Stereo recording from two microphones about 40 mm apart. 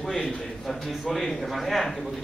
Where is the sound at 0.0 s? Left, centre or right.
Centre.